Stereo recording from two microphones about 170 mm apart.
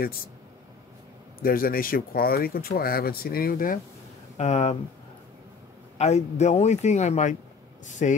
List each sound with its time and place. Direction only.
1.4 s speech: 60° left (ahead or behind)
4.4 s speech: 40° left (ahead or behind)
5.9 s speech: 40° left (ahead or behind)